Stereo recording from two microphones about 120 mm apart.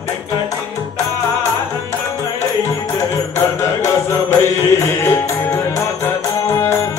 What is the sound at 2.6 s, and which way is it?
Music, 20° left (ahead or behind).